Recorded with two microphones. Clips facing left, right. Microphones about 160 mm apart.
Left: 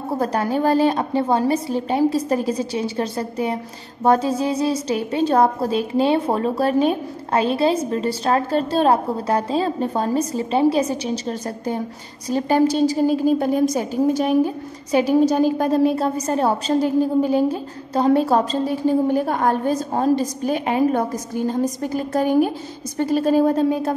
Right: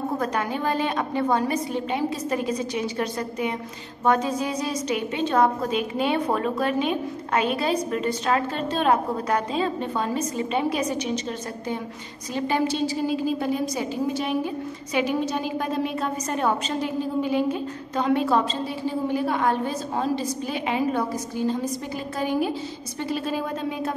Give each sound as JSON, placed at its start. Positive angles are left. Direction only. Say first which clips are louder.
{"t": 0.2, "sound": "a woman's voice", "louder": "left 6 dB", "side_deg": 35}